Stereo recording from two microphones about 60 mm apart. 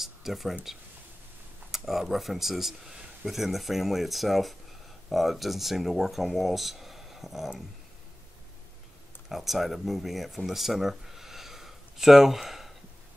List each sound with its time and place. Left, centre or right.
0.0 s speech: centre
1.7 s speech: centre
9.3 s speech: centre